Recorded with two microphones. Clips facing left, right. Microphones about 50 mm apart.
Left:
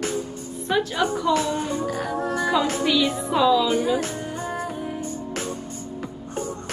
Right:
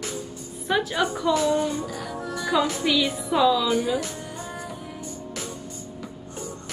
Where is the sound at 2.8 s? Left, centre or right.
Centre.